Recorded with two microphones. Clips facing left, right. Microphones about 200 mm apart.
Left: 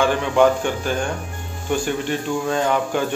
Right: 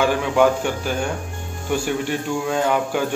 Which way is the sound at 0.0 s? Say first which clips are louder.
Left 1 dB; 10° right (ahead or behind).